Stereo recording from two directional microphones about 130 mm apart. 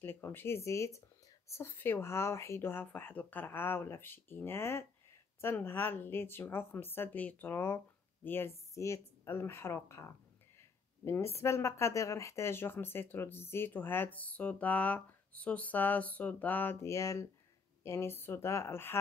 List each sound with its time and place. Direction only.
0.0 s speech: 15° left (ahead or behind)